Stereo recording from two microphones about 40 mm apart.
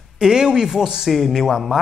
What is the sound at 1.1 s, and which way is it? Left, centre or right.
Speech, centre.